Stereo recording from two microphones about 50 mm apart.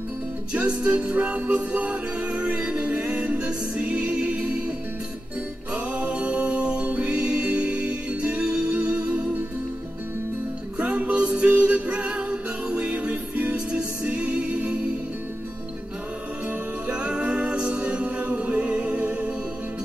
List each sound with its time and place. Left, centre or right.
0.5 s music: right
5.9 s music: right
10.8 s music: right
16.4 s music: right